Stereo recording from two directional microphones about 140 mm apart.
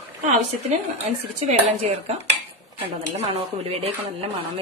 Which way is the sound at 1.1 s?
60° right (ahead or behind).